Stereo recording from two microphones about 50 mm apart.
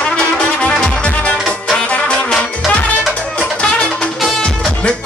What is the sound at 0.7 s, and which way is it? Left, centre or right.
Music, left.